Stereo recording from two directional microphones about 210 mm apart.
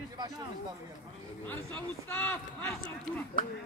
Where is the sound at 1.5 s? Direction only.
10° left (ahead or behind).